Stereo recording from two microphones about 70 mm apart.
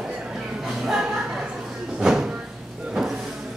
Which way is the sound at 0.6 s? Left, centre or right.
Centre.